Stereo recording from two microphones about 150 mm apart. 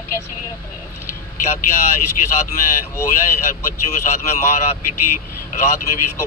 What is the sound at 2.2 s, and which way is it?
Speech, 50° left (ahead or behind).